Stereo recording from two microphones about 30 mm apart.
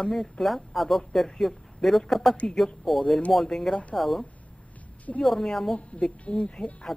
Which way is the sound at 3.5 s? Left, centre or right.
Centre.